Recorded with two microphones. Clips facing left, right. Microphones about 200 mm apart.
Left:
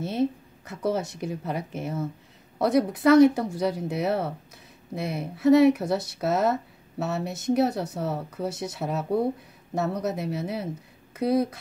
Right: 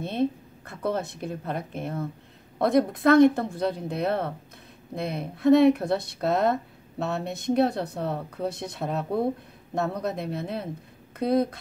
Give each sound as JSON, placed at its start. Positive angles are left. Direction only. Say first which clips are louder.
{"t": 0.0, "sound": "speech", "louder": "even", "side_deg": 5}